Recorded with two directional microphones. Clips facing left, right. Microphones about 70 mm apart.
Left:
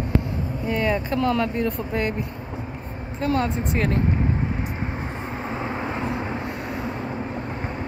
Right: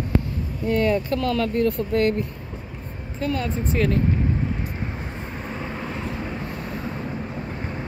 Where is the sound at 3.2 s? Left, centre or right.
Left.